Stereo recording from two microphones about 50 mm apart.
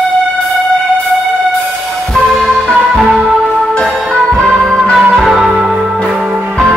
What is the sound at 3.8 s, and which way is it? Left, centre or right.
Music, centre.